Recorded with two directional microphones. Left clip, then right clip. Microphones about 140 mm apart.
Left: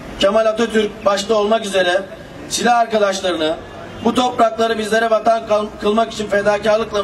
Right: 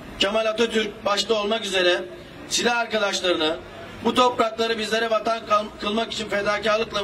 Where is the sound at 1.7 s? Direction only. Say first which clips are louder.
Left 5 dB; 25° right (ahead or behind).